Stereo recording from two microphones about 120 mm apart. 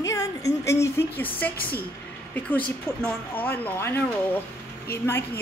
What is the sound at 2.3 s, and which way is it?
Speech, 10° left (ahead or behind).